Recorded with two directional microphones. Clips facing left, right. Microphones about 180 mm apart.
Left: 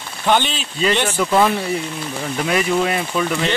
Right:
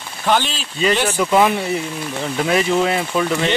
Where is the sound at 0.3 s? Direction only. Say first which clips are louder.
Left 1 dB; centre (ahead or behind).